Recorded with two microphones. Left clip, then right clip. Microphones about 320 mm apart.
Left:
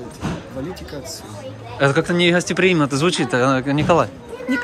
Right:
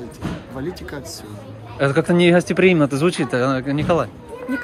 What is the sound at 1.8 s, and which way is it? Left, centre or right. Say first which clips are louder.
A man's voice: even; centre.